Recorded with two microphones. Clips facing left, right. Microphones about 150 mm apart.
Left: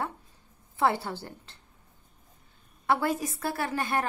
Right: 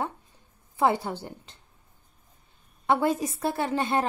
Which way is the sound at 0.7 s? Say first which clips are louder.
Right 2 dB; 15° right (ahead or behind).